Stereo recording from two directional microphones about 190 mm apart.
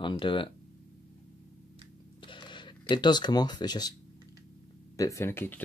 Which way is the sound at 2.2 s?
25° left (ahead or behind).